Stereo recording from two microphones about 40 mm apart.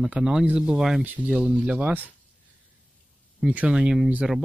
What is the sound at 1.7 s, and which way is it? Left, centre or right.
Speech, right.